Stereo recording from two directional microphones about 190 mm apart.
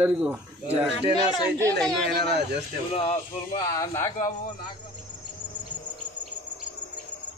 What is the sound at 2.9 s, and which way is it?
Speech, 30° left (ahead or behind).